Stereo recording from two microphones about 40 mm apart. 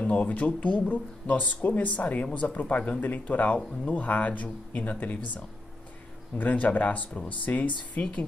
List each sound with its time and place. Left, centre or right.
0.0 s speech: left
3.0 s speech: left
6.3 s speech: left